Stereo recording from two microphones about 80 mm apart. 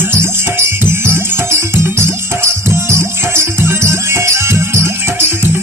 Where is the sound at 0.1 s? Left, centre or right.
Right.